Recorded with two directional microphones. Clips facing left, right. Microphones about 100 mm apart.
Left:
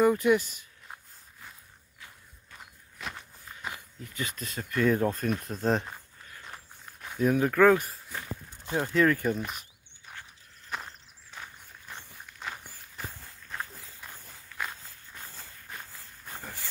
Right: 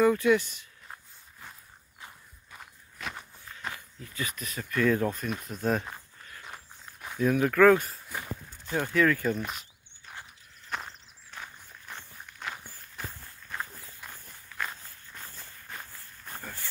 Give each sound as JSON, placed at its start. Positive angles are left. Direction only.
{"t": 0.0, "sound": "speech", "side_deg": 15}
{"t": 2.5, "sound": "walk", "side_deg": 0}
{"t": 3.7, "sound": "speech", "side_deg": 20}
{"t": 6.4, "sound": "walk", "side_deg": -5}
{"t": 7.2, "sound": "speech", "side_deg": 15}
{"t": 10.7, "sound": "walk", "side_deg": 0}